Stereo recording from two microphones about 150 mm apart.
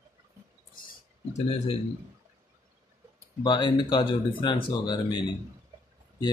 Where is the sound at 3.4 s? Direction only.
30° left (ahead or behind).